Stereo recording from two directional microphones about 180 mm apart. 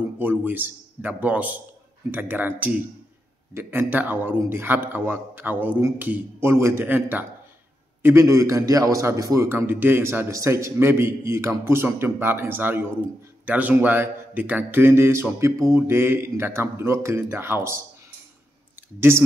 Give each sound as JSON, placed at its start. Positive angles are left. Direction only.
{"t": 0.2, "sound": "a man's voice", "side_deg": -10}
{"t": 18.9, "sound": "a man's voice", "side_deg": -15}